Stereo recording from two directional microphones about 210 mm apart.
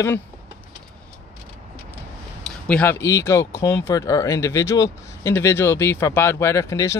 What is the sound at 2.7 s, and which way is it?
Speech, 10° left (ahead or behind).